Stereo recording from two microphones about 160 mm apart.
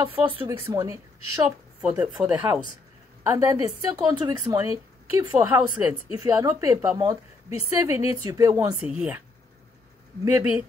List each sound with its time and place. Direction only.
0.2 s speech: 35° right (ahead or behind)
0.5 s speech: 20° right (ahead or behind)
1.8 s speech: 5° right (ahead or behind)
3.3 s speech: 20° right (ahead or behind)
8.8 s speech: 5° right (ahead or behind)
10.2 s speech: 10° right (ahead or behind)